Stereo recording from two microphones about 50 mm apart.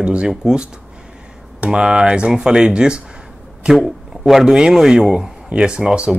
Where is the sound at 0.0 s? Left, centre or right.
Right.